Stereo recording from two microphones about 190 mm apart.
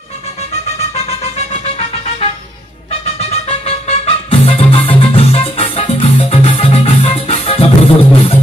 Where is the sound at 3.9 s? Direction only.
30° left (ahead or behind).